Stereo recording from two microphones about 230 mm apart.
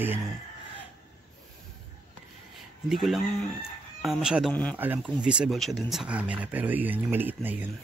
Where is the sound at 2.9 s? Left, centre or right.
Centre.